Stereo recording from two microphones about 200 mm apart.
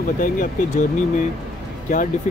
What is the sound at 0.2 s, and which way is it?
Speech, 45° left (ahead or behind).